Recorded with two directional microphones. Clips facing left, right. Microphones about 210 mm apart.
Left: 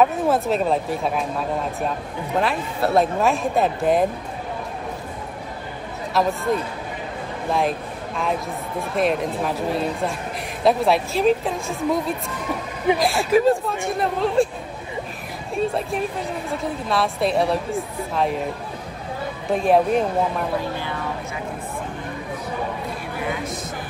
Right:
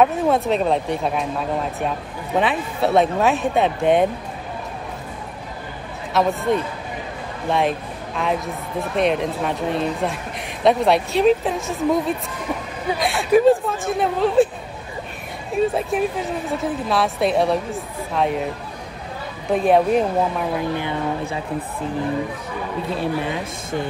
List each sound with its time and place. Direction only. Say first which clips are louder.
0.0 s speech: right 1 dB; centre (ahead or behind)
6.1 s speech: right 2 dB; centre (ahead or behind)
15.5 s speech: right 3 dB; centre (ahead or behind)
19.5 s speech: right 2 dB; centre (ahead or behind)
20.7 s speech: right 4 dB; 20° right (ahead or behind)